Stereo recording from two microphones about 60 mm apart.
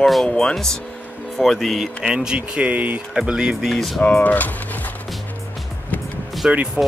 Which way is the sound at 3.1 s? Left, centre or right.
Centre.